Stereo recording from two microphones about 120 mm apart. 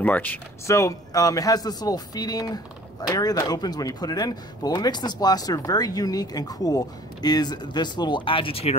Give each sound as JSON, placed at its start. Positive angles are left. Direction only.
{"t": 0.0, "sound": "speech", "side_deg": 15}
{"t": 0.7, "sound": "speech", "side_deg": 25}